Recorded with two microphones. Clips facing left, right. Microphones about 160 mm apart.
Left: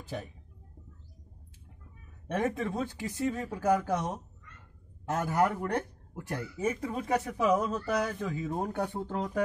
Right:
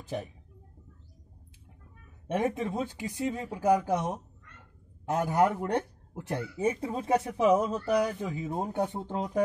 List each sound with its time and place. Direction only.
2.2 s speech: 15° right (ahead or behind)